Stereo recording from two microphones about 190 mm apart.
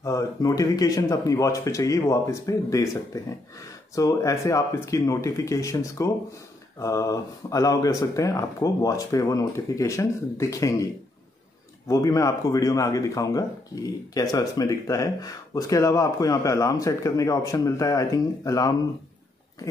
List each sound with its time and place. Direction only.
0.0 s speech: 20° left (ahead or behind)
11.9 s speech: 20° left (ahead or behind)